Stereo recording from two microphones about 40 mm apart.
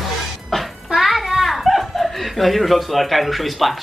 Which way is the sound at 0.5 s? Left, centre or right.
Centre.